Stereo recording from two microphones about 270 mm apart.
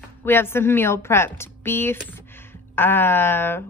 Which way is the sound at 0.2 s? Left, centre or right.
Centre.